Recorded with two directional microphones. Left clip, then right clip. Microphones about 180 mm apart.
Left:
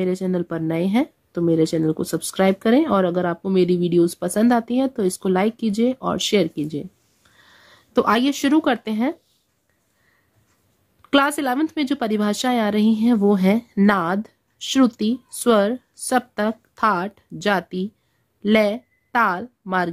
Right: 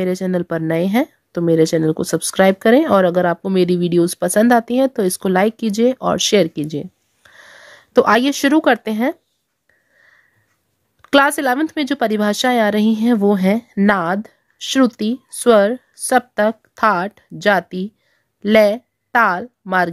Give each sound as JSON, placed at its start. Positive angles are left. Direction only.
{"t": 0.0, "sound": "speech", "side_deg": -25}
{"t": 11.0, "sound": "a woman's voice", "side_deg": -25}